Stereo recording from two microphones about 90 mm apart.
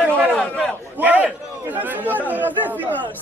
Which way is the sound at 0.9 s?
20° right (ahead or behind).